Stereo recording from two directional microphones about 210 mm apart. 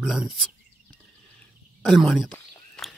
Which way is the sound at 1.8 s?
Centre (ahead or behind).